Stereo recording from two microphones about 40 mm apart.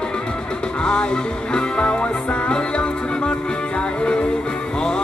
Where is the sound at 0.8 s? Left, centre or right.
Left.